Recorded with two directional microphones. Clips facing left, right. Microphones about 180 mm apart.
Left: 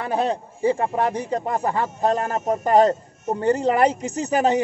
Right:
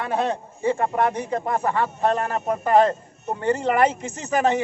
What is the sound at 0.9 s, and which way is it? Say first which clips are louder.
A man's voice: even; 35° left (ahead or behind).